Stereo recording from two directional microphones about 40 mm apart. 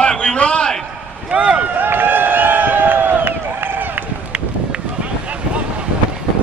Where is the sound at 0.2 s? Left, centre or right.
Left.